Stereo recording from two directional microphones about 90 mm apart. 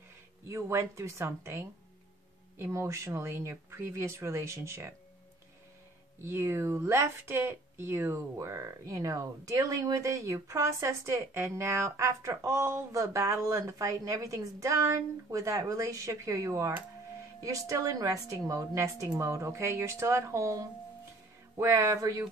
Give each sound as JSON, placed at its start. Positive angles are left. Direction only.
{"t": 0.5, "sound": "speech", "side_deg": -35}
{"t": 6.2, "sound": "speech", "side_deg": -30}